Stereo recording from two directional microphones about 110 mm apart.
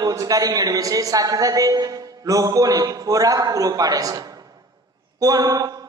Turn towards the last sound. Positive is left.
turn(degrees=-35)  # may be behind; listen again after turning